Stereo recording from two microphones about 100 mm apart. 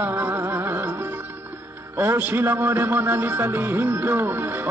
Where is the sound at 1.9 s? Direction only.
20° right (ahead or behind).